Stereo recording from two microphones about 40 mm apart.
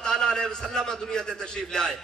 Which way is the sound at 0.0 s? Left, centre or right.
Centre.